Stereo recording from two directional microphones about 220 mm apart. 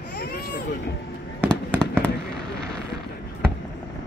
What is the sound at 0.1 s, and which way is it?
Baby cry, 45° left (ahead or behind).